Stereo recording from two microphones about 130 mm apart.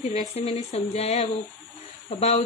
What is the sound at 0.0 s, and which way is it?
Speech, 55° left (ahead or behind).